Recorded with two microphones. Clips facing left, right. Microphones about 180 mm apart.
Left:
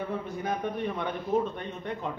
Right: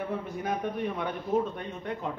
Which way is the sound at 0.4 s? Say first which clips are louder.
Even; 5° right (ahead or behind).